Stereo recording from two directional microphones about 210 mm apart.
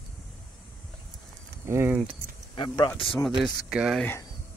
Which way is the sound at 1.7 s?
10° right (ahead or behind).